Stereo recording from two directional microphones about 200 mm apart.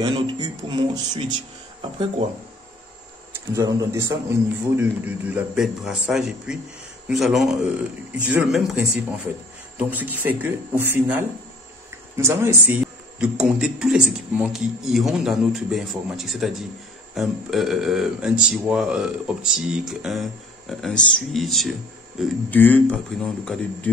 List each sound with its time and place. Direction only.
0.0 s a sound: 25° right (ahead or behind)
1.8 s speech: 25° right (ahead or behind)
3.5 s a man's voice: 15° right (ahead or behind); by 23.9 s 5° left (ahead or behind)